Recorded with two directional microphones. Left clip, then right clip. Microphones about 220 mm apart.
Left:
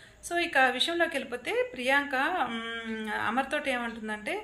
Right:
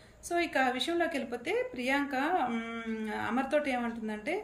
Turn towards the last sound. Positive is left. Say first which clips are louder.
# left 2 dB
turn(degrees=-5)  # may be behind; listen again after turning